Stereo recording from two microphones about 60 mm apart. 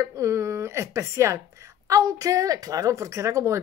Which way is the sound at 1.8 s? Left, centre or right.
Right.